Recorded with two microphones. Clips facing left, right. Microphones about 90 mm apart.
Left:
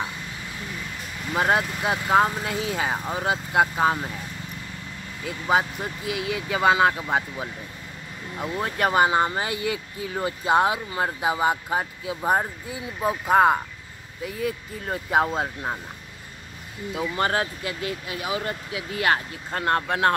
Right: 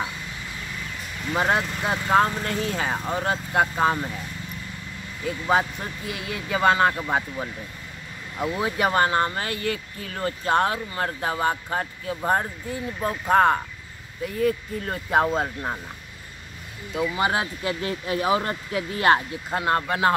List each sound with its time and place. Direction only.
1.2 s speech: 5° left (ahead or behind)
5.2 s speech: 5° left (ahead or behind)
8.9 s speech: 15° left (ahead or behind)
16.9 s speech: centre (ahead or behind)
17.2 s speech: 15° right (ahead or behind)
17.6 s speech: 35° right (ahead or behind)
19.5 s speech: centre (ahead or behind)